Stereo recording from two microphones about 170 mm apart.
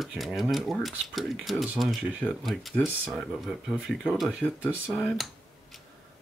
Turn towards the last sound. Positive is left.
turn(degrees=0)  # may be behind; listen again after turning